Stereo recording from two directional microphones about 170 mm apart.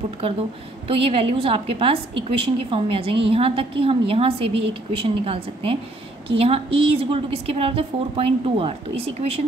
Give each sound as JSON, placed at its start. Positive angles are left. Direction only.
{"t": 0.8, "sound": "a woman's voice", "side_deg": -35}